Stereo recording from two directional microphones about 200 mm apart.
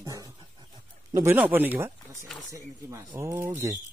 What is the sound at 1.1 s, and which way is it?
Speech, 10° right (ahead or behind).